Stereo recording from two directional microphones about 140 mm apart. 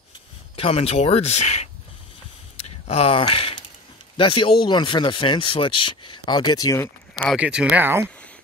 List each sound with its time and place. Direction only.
0.6 s speech: 45° left (ahead or behind)
2.5 s a sound: 50° left (ahead or behind)
4.2 s speech: 35° left (ahead or behind)
7.3 s speech: 10° right (ahead or behind)